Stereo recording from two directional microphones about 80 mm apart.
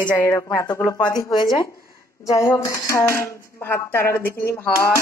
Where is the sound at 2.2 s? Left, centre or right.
Left.